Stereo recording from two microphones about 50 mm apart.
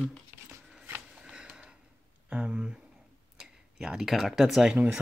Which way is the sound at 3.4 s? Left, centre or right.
Centre.